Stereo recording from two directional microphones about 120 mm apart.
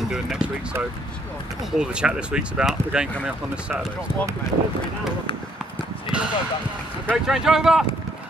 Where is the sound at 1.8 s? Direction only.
10° right (ahead or behind).